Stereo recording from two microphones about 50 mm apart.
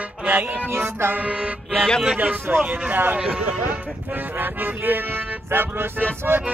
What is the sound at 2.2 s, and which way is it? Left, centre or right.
Speech, right.